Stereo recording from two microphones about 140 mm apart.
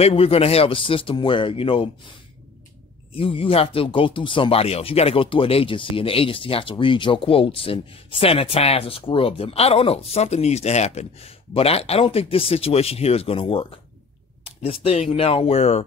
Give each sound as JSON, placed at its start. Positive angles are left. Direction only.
{"t": 0.0, "sound": "speech", "side_deg": 45}
{"t": 3.2, "sound": "speech", "side_deg": 40}